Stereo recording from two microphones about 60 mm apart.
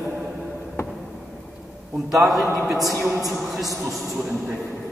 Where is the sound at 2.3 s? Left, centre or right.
Centre.